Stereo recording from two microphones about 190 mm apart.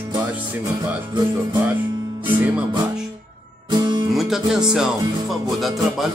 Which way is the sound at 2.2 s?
10° right (ahead or behind).